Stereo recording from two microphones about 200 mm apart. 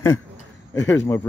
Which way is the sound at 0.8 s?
10° left (ahead or behind).